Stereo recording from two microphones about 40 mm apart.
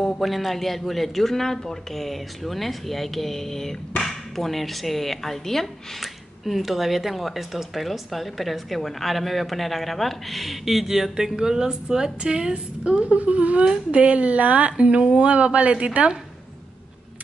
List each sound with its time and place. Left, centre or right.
0.0 s speech: centre
6.4 s a woman's voice: centre; by 12.9 s right
13.1 s speech: right